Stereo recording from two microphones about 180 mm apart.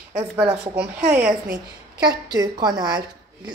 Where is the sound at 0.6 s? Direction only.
5° right (ahead or behind).